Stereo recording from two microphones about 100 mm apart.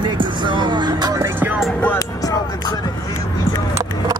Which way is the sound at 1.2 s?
20° right (ahead or behind).